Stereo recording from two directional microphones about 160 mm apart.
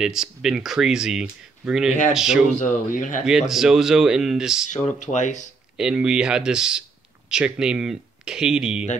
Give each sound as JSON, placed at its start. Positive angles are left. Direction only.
{"t": 0.0, "sound": "speech", "side_deg": -5}
{"t": 2.5, "sound": "speech", "side_deg": 55}
{"t": 3.3, "sound": "speech", "side_deg": -5}
{"t": 4.9, "sound": "speech", "side_deg": 50}
{"t": 5.8, "sound": "speech", "side_deg": -5}